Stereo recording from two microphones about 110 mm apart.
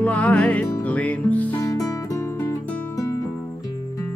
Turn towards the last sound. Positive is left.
turn(degrees=30)  # may be behind; listen again after turning